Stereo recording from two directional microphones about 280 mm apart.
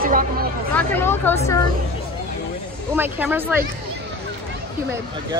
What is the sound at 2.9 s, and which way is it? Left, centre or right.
Speech, centre.